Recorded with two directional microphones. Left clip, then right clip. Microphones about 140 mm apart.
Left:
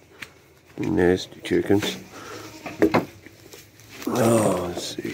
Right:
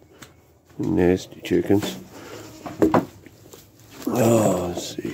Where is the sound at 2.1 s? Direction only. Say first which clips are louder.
Left 1 dB; 15° right (ahead or behind).